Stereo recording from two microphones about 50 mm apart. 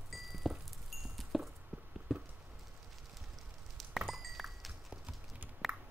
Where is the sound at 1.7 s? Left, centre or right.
Right.